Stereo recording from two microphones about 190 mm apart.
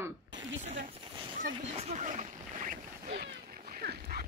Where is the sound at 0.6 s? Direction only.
40° right (ahead or behind).